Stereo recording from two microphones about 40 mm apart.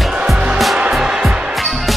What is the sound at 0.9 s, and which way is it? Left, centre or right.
Music, centre.